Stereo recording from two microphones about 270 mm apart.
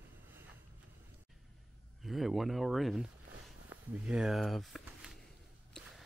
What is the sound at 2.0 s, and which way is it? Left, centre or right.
Speech, centre.